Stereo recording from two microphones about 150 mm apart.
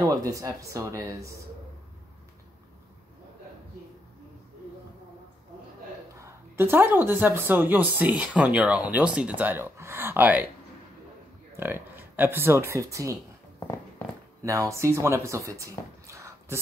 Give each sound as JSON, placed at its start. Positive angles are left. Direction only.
{"t": 0.0, "sound": "speech", "side_deg": -25}
{"t": 6.1, "sound": "a sound", "side_deg": -15}
{"t": 7.1, "sound": "speech", "side_deg": -15}
{"t": 11.5, "sound": "speech", "side_deg": -15}
{"t": 14.4, "sound": "speech", "side_deg": -20}